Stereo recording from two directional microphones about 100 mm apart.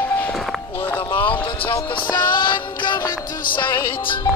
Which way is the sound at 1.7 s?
45° left (ahead or behind).